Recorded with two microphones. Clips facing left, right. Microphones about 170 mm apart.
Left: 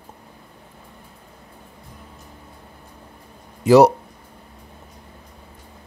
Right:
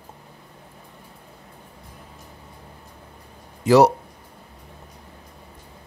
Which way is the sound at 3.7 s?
15° left (ahead or behind).